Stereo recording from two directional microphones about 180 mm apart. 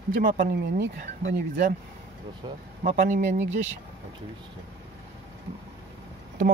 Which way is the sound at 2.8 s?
55° right (ahead or behind).